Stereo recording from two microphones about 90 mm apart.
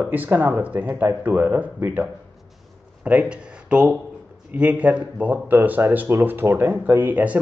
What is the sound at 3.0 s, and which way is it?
Speech, 15° right (ahead or behind).